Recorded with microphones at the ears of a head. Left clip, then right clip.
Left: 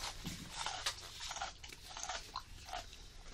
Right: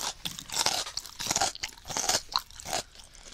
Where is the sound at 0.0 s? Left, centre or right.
Right.